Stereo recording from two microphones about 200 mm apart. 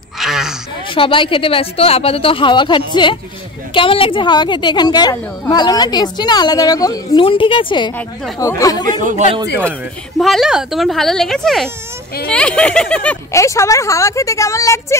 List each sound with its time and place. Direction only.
0.2 s a sound: centre (ahead or behind)
0.8 s a woman's voice: 25° left (ahead or behind)
9.0 s speech: 35° right (ahead or behind)
9.7 s speech: centre (ahead or behind)